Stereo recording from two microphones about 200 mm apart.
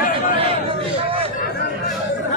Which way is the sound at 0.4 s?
30° right (ahead or behind).